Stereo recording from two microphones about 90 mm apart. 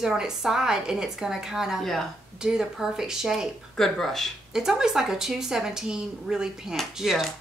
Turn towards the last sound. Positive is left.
turn(degrees=0)  # may be behind; listen again after turning